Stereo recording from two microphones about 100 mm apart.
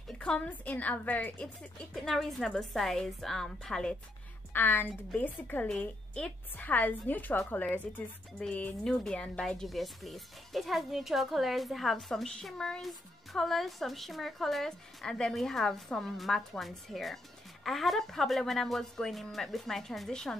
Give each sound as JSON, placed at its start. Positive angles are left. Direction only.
{"t": 0.2, "sound": "a woman's voice", "side_deg": 15}
{"t": 4.5, "sound": "a woman's voice", "side_deg": 20}